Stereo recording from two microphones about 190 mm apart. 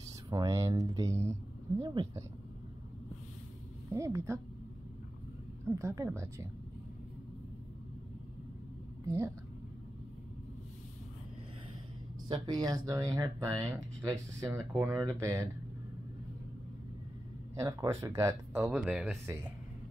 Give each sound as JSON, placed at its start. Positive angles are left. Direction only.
{"t": 0.3, "sound": "speech", "side_deg": -20}
{"t": 3.9, "sound": "speech", "side_deg": -15}
{"t": 5.8, "sound": "speech", "side_deg": -15}
{"t": 12.3, "sound": "speech", "side_deg": -20}
{"t": 17.6, "sound": "speech", "side_deg": -15}